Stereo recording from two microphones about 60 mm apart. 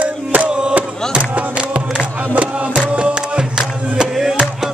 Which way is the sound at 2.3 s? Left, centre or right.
Right.